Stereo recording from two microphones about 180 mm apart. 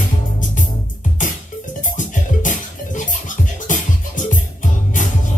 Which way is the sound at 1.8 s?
45° left (ahead or behind).